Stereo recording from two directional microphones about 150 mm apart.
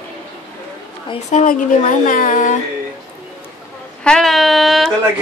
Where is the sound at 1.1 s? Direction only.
55° left (ahead or behind).